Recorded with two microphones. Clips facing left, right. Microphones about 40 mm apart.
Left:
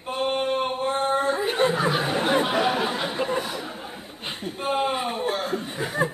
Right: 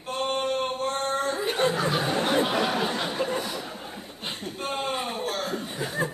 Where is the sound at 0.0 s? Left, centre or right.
Centre.